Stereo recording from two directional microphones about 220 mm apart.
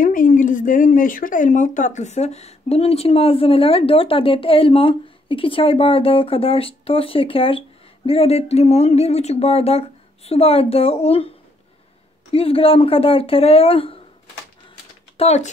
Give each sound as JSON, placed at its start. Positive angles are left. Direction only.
{"t": 0.0, "sound": "speech", "side_deg": 40}
{"t": 12.3, "sound": "speech", "side_deg": 25}
{"t": 15.1, "sound": "speech", "side_deg": 30}